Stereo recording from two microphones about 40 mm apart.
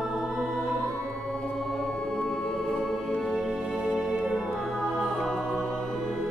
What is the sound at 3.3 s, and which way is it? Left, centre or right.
Music, centre.